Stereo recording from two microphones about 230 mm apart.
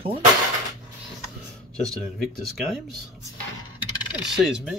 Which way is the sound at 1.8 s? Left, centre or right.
Centre.